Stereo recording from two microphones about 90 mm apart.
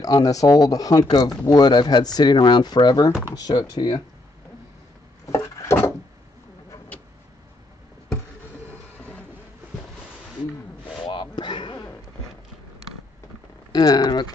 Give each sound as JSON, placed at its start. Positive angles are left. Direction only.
{"t": 0.0, "sound": "speech", "side_deg": 45}
{"t": 5.2, "sound": "wood", "side_deg": 35}
{"t": 8.6, "sound": "train", "side_deg": 15}
{"t": 11.1, "sound": "a sound", "side_deg": 60}
{"t": 13.7, "sound": "speech", "side_deg": 50}